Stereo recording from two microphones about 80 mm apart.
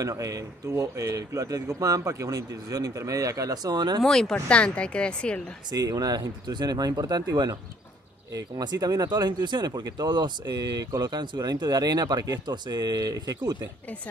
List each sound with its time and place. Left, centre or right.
0.0 s a man's voice: right
4.0 s speech: centre
5.7 s speech: right